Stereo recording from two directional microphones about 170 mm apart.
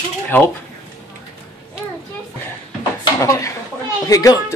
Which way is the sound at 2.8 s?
20° left (ahead or behind).